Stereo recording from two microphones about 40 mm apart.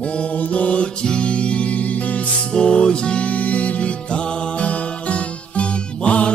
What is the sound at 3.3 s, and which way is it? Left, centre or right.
Music, left.